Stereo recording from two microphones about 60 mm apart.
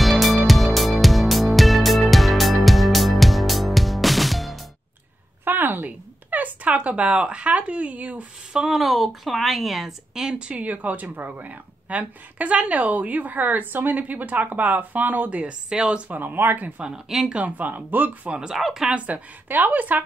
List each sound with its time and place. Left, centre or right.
0.0 s music: centre
5.4 s a sound: right
8.5 s a woman's voice: centre
10.4 s a woman's voice: right
16.1 s speech: right
16.8 s speech: centre
17.3 s a woman's voice: right
18.5 s a woman's voice: centre
18.9 s a woman's voice: right